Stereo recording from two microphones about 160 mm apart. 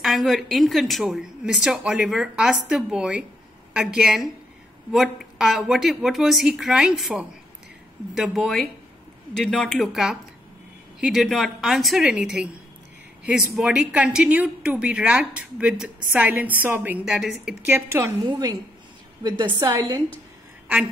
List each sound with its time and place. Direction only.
0.0 s a woman's voice: centre (ahead or behind)
17.6 s a woman's voice: 15° right (ahead or behind)